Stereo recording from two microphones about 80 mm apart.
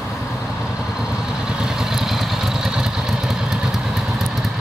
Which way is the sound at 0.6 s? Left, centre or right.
Centre.